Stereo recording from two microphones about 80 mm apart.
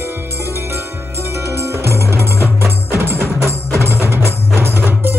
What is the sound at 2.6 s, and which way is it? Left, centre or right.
Percussion, right.